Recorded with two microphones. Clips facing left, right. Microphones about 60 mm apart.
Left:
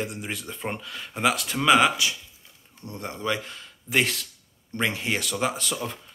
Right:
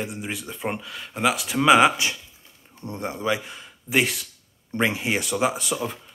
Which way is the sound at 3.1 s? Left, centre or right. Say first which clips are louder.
Right 2 dB; centre.